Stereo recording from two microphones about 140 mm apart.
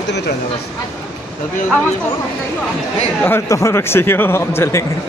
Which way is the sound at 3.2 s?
20° left (ahead or behind).